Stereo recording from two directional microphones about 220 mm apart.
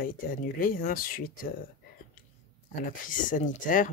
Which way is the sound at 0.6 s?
40° left (ahead or behind).